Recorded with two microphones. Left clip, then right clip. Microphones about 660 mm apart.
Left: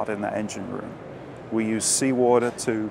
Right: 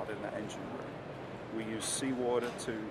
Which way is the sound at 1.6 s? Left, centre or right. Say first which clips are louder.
Left 13 dB; left.